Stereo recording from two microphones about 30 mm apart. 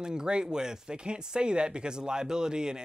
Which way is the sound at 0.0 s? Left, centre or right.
Right.